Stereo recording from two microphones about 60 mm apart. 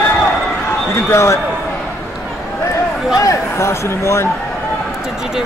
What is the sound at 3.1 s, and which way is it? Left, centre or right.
Speech, left.